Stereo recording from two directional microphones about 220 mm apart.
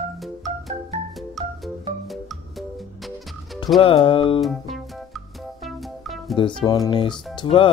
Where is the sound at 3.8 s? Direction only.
25° left (ahead or behind).